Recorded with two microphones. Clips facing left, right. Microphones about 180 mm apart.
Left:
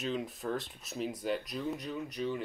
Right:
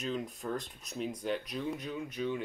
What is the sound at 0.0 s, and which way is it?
Speech, 5° left (ahead or behind).